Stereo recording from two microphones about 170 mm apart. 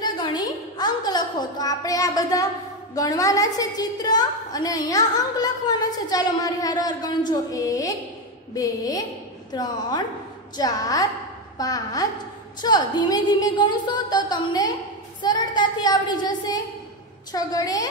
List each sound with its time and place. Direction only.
0.0 s a sound: 25° left (ahead or behind)
2.9 s a woman's voice: 20° left (ahead or behind)
15.2 s child singing: 25° left (ahead or behind)
17.3 s a woman's voice: 20° left (ahead or behind)